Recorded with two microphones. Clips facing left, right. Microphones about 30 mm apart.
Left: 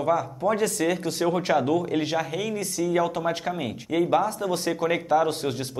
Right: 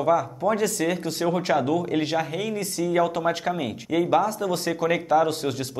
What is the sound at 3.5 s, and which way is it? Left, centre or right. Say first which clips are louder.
Speech: right 1 dB; centre.